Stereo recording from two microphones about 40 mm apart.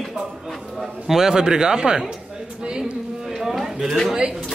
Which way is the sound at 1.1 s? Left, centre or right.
Centre.